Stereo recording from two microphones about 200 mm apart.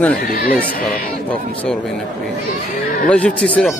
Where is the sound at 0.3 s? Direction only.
45° left (ahead or behind).